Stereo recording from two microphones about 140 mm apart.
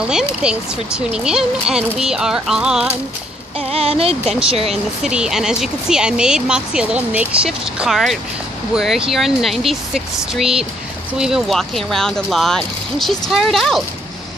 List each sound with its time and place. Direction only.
0.4 s speech: 5° right (ahead or behind)
3.5 s speech: 45° right (ahead or behind)
5.0 s speech: 5° right (ahead or behind)